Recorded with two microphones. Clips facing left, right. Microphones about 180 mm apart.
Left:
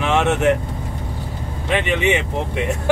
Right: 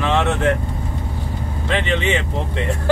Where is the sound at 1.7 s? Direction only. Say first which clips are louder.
Left 2 dB; 15° left (ahead or behind).